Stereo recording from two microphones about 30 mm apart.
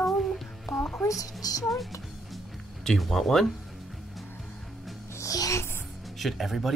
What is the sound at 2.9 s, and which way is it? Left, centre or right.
Speech, centre.